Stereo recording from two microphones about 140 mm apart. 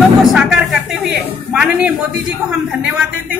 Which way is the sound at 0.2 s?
5° right (ahead or behind).